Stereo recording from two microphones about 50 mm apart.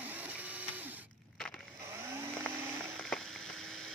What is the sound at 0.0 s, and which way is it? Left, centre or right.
Printer, right.